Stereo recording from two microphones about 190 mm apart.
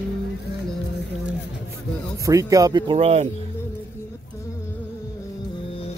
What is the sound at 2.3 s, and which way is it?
Speech, 15° right (ahead or behind).